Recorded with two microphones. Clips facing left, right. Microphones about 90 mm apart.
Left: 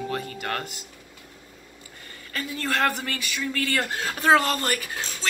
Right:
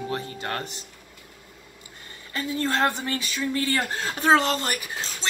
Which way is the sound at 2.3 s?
25° right (ahead or behind).